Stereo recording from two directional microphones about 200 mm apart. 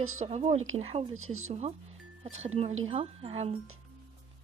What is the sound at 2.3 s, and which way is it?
Speech, 35° right (ahead or behind).